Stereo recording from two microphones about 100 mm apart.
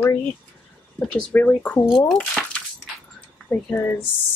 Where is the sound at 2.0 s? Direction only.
5° left (ahead or behind).